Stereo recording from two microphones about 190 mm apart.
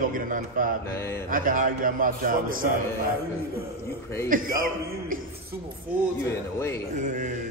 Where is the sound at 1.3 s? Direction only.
45° right (ahead or behind).